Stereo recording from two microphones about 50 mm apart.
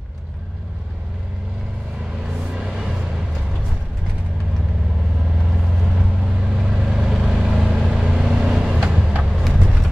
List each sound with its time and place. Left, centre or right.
2.2 s music: centre
5.5 s vehicle: centre